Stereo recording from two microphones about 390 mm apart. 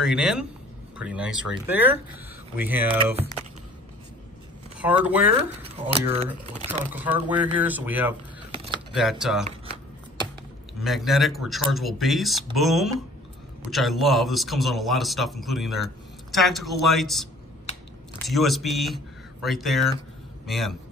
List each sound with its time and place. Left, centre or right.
0.0 s a man's voice: centre
4.7 s speech: centre
5.6 s speech: centre
6.9 s a man's voice: centre
10.8 s a man's voice: centre